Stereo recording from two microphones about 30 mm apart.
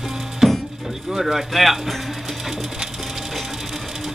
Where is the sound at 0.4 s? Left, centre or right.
Centre.